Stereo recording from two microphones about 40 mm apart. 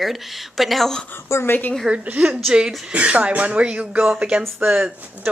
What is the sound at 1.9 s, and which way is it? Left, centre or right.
Speech, centre.